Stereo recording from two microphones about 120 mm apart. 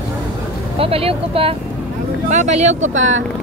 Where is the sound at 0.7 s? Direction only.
55° right (ahead or behind).